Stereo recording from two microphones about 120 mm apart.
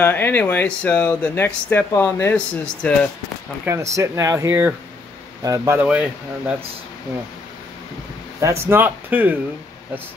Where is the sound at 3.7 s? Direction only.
25° right (ahead or behind).